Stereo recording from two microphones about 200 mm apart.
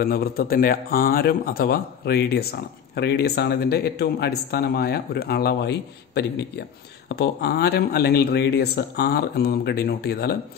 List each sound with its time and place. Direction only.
0.0 s a man's voice: 50° left (ahead or behind)